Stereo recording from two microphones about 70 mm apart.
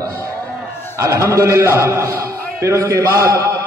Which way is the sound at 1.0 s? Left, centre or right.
Right.